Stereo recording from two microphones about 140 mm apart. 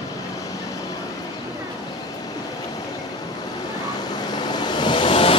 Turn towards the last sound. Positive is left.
turn(degrees=40)  # may be behind; listen again after turning